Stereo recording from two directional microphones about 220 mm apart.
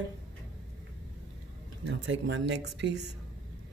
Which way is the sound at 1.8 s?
55° right (ahead or behind).